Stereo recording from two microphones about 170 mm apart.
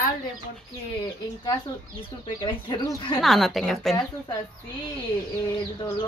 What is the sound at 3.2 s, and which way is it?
Speech, centre (ahead or behind).